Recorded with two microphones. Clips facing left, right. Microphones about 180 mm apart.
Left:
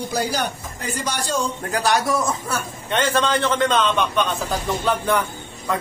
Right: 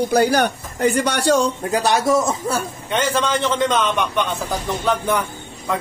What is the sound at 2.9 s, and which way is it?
Speech, 15° right (ahead or behind).